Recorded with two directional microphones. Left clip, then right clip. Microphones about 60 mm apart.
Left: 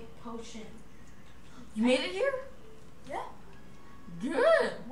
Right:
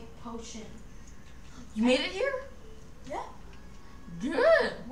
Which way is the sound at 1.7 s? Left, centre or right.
Centre.